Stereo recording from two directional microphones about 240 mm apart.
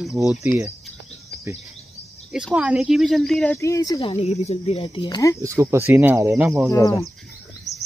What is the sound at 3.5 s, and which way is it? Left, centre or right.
Speech, centre.